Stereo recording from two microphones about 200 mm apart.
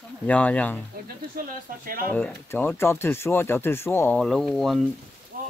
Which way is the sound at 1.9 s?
45° right (ahead or behind).